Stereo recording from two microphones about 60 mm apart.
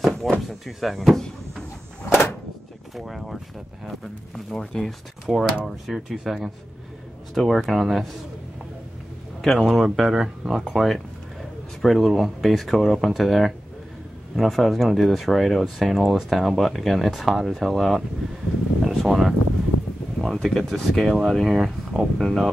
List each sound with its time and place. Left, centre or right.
0.0 s speech: centre
2.0 s a sound: left
3.0 s speech: centre
9.4 s speech: centre
20.3 s speech: centre